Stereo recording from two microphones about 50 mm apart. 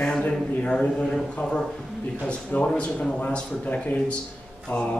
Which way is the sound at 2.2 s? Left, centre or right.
Left.